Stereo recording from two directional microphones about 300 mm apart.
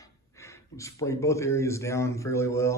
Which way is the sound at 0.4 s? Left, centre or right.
Centre.